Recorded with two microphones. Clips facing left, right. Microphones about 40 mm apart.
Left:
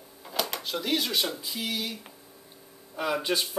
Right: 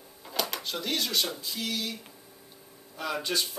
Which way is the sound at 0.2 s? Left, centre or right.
Centre.